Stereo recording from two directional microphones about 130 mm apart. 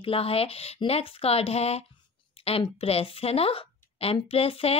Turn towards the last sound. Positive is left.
turn(degrees=50)  # may be behind; listen again after turning